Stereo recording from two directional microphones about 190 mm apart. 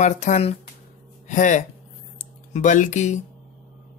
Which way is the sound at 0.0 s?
40° left (ahead or behind).